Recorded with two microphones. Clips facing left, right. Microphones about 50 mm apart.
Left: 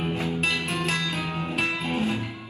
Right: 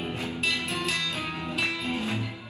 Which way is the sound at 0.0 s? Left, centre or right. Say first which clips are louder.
Left 4 dB; left.